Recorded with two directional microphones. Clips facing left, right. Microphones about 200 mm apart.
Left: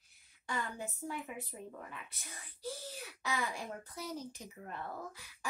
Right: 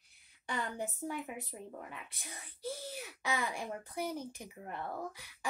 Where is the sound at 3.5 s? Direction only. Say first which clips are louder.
Right 4 dB; 55° right (ahead or behind).